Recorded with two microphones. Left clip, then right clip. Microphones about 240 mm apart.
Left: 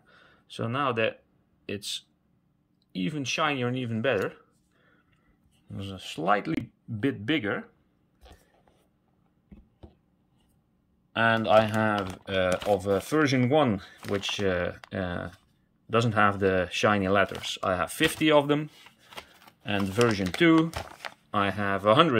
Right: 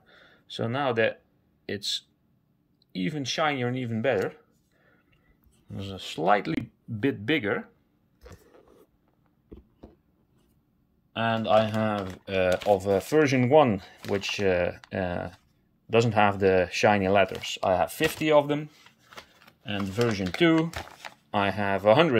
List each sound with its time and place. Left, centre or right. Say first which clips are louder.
0.0 s a sound: right 2 dB; centre
1.7 s speech: right 4 dB; centre
5.7 s speech: right 2 dB; centre
11.1 s speech: left 2 dB; centre
18.9 s shuffling cards: left 2 dB; left
20.4 s speech: left 1 dB; centre